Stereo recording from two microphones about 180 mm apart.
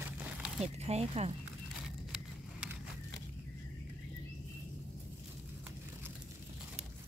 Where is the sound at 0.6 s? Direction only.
35° right (ahead or behind).